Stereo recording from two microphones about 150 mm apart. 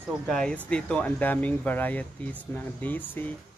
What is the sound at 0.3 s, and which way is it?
Speech, 5° left (ahead or behind).